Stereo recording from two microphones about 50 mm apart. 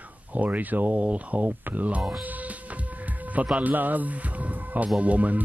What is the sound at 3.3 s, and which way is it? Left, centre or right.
Speech, right.